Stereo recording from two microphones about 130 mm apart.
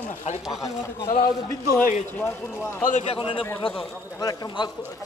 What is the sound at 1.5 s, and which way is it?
Speech, 25° left (ahead or behind).